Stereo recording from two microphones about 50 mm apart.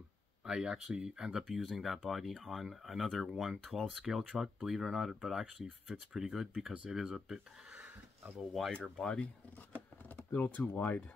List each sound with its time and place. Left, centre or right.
0.5 s speech: centre
8.4 s speech: centre
9.0 s speech: centre
10.0 s speech: left